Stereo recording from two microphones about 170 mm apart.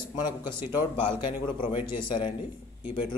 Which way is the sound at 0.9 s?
30° left (ahead or behind).